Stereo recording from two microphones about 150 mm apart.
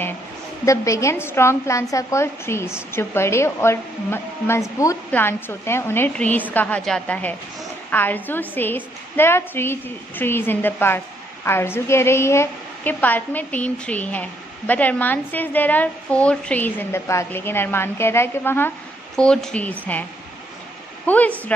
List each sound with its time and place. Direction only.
0.7 s a woman's voice: 20° left (ahead or behind)